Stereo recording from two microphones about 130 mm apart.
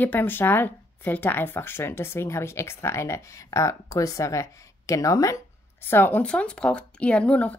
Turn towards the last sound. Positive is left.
turn(degrees=10)  # may be behind; listen again after turning